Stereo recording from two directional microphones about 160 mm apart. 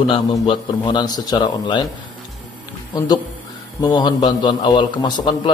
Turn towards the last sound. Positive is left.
turn(degrees=30)  # may be behind; listen again after turning